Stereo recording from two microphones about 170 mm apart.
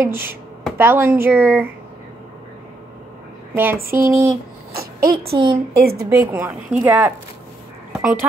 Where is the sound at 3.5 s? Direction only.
10° right (ahead or behind).